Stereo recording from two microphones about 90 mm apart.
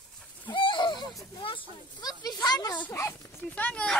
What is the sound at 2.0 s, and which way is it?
Speech, 50° left (ahead or behind).